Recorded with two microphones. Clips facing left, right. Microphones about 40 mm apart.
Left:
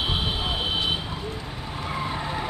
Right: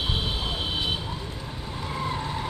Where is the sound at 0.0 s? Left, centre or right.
Centre.